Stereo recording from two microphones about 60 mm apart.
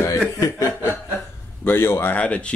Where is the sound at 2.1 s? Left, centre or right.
Left.